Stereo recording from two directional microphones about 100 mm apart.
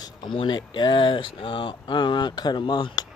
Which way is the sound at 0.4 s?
50° left (ahead or behind).